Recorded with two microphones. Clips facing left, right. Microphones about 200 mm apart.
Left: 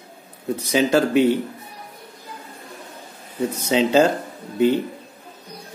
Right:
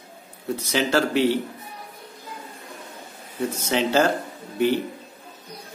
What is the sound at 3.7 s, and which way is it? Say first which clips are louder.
Speech: left 4 dB; 20° left (ahead or behind).